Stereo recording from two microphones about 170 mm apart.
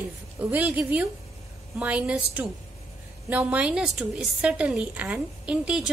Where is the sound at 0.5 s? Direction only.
10° right (ahead or behind).